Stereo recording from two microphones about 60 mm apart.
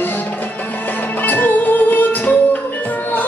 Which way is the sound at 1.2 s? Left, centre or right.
Left.